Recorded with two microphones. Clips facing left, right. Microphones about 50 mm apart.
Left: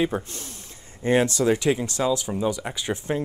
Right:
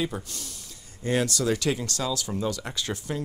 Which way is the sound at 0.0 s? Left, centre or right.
Left.